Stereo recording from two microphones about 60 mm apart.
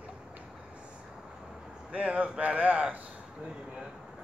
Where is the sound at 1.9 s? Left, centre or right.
Right.